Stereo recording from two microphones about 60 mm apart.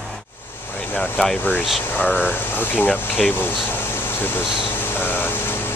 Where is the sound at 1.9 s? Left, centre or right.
Left.